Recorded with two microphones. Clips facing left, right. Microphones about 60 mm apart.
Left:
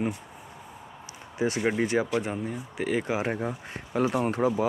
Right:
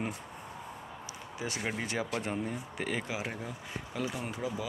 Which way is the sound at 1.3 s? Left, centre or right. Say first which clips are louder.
Left 10 dB; left.